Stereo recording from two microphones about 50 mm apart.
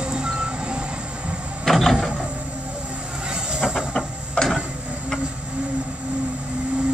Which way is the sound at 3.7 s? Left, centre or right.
Centre.